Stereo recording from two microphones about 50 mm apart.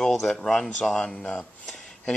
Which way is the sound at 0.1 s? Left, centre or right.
Centre.